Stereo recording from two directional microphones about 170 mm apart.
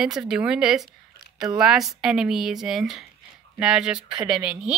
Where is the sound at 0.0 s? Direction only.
5° right (ahead or behind).